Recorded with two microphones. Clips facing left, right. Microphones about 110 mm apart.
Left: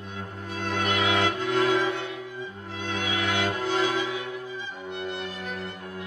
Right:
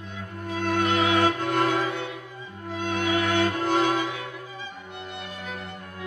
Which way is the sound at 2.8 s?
45° right (ahead or behind).